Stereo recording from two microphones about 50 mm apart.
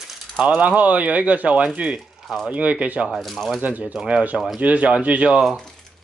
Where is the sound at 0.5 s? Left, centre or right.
Right.